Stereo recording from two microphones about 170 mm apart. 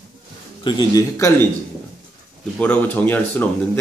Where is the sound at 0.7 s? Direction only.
20° left (ahead or behind).